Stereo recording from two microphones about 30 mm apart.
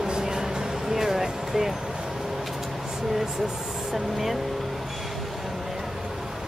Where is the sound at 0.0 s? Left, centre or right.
Right.